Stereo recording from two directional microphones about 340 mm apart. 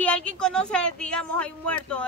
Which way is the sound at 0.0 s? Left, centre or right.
Centre.